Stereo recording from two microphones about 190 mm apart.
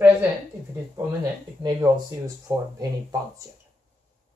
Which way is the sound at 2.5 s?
15° right (ahead or behind).